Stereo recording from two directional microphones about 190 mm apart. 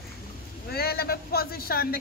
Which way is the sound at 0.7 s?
55° left (ahead or behind).